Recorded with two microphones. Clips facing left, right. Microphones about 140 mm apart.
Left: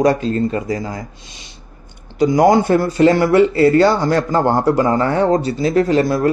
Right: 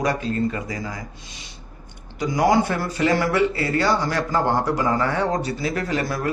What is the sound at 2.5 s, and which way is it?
A man's voice, 35° left (ahead or behind).